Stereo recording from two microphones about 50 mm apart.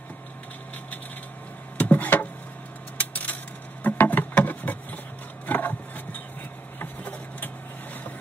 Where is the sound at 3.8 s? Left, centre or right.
Left.